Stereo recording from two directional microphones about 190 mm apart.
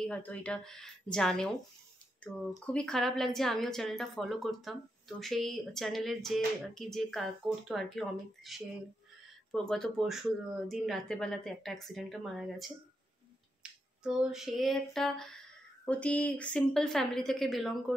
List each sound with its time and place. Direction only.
0.0 s a woman's voice: 5° left (ahead or behind)
13.6 s a sound: 5° right (ahead or behind)
15.8 s a woman's voice: 5° left (ahead or behind)